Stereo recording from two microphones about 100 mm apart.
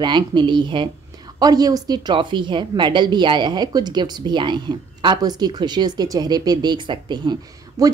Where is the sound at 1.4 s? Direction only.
40° right (ahead or behind).